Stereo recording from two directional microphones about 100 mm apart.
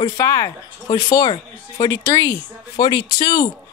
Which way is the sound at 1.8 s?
30° left (ahead or behind).